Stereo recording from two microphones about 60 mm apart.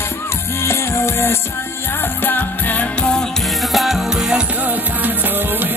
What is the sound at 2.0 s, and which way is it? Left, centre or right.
Music, left.